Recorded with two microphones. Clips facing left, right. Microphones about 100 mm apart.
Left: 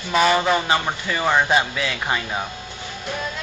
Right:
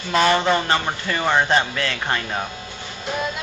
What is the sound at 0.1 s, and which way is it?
A man's voice, 5° left (ahead or behind).